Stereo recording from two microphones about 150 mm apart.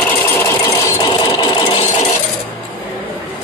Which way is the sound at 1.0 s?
35° left (ahead or behind).